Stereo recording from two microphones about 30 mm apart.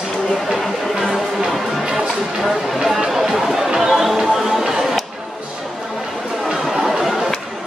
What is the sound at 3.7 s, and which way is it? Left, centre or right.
Music, centre.